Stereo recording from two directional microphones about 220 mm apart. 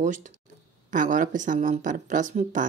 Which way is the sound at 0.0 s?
35° right (ahead or behind).